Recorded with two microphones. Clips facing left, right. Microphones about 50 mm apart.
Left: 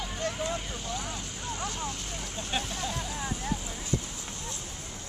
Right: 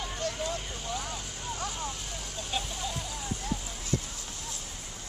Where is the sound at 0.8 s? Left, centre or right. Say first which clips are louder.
Even; centre.